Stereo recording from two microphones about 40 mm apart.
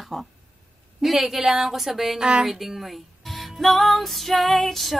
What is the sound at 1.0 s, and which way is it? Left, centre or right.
A woman's voice, centre.